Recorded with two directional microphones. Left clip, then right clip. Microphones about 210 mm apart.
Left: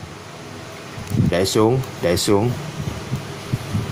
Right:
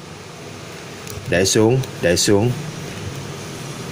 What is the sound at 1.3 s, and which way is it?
Speech, 15° right (ahead or behind).